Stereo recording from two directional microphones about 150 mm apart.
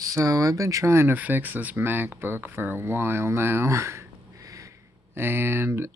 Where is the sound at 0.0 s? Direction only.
20° right (ahead or behind).